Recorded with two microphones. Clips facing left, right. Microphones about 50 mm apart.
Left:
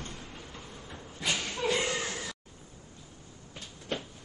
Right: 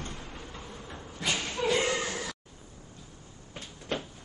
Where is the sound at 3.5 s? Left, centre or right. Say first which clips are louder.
Right 2 dB; right.